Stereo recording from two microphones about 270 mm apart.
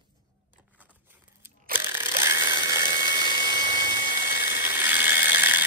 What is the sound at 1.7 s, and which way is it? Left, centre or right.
Mechanisms, centre.